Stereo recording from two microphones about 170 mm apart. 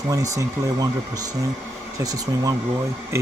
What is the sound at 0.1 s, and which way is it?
Speech, 20° right (ahead or behind).